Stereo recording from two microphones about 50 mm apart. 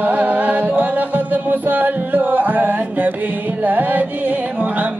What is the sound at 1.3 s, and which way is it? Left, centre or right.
Music, right.